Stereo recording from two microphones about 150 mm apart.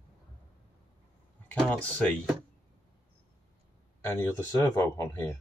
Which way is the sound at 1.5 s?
10° left (ahead or behind).